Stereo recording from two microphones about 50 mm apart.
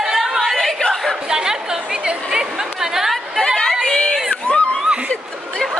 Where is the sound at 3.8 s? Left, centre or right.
Centre.